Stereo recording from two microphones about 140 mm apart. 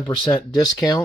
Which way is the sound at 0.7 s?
25° left (ahead or behind).